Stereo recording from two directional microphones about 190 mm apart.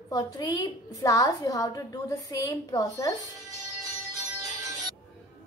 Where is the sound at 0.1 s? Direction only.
20° left (ahead or behind).